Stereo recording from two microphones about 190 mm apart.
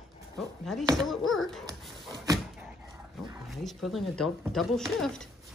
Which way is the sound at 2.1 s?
20° right (ahead or behind).